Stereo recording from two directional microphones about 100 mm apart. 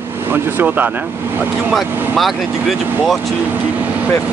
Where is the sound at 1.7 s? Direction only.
Centre (ahead or behind).